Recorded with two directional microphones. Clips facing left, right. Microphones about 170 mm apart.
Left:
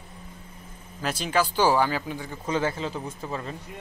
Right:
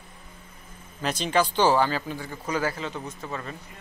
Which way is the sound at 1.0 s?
5° left (ahead or behind).